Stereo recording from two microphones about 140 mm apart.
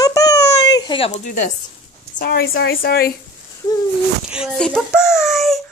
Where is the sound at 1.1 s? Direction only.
65° left (ahead or behind).